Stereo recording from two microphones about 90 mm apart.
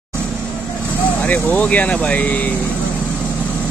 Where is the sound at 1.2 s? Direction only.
20° left (ahead or behind).